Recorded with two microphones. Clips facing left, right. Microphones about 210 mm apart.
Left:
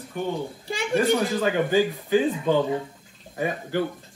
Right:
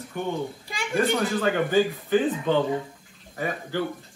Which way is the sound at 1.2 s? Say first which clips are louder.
Left 1 dB; 15° left (ahead or behind).